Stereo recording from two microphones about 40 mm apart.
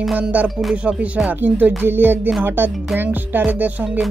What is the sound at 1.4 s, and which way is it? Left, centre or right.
Speech, right.